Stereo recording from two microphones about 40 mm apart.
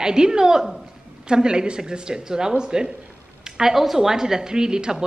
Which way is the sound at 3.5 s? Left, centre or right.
Centre.